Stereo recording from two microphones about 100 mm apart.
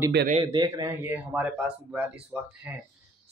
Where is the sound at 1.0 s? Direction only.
15° right (ahead or behind).